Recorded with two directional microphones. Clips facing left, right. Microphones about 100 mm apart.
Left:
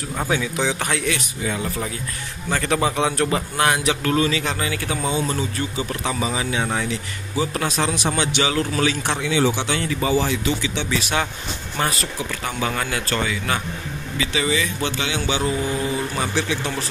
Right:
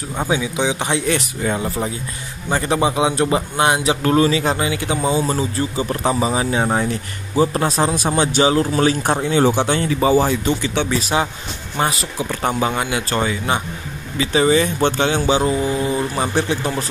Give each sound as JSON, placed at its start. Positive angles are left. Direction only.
{"t": 0.1, "sound": "a man's voice", "side_deg": -15}
{"t": 1.1, "sound": "speech", "side_deg": -40}
{"t": 2.5, "sound": "a man's voice", "side_deg": -25}
{"t": 4.6, "sound": "a man's voice", "side_deg": -20}
{"t": 5.1, "sound": "speech", "side_deg": -35}
{"t": 9.0, "sound": "speech", "side_deg": -40}
{"t": 9.8, "sound": "a man's voice", "side_deg": -30}
{"t": 10.1, "sound": "speech", "side_deg": -45}
{"t": 11.0, "sound": "speech", "side_deg": -30}
{"t": 11.8, "sound": "a man's voice", "side_deg": -20}
{"t": 12.4, "sound": "speech", "side_deg": -35}
{"t": 12.6, "sound": "a man's voice", "side_deg": -20}
{"t": 13.2, "sound": "speech", "side_deg": -30}